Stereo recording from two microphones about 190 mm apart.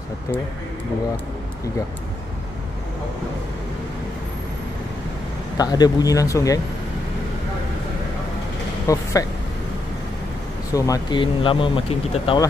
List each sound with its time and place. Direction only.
5.6 s speech: 20° left (ahead or behind)
8.8 s speech: 15° left (ahead or behind)
10.7 s speech: 20° left (ahead or behind)